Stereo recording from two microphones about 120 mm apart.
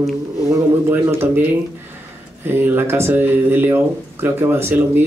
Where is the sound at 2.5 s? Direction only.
20° right (ahead or behind).